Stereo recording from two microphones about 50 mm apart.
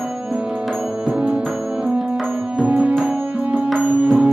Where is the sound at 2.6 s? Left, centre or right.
Right.